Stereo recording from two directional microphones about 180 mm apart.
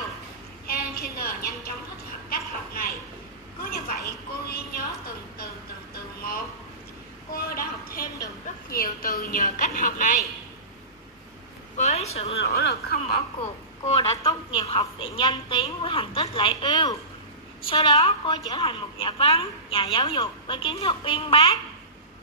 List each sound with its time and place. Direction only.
0.7 s a sound: 55° left (ahead or behind)
3.7 s a woman's voice: 55° left (ahead or behind)
7.3 s a woman's voice: 55° left (ahead or behind)
11.7 s speech: 40° left (ahead or behind)
12.4 s speech: 65° left (ahead or behind)
13.8 s a woman's voice: 35° left (ahead or behind)